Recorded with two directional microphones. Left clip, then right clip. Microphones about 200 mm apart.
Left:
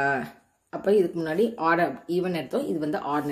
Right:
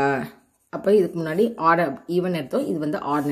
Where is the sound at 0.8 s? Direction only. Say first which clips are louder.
Right 3 dB; 45° right (ahead or behind).